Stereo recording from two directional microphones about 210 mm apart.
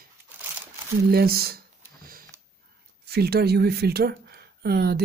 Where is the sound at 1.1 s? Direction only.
45° right (ahead or behind).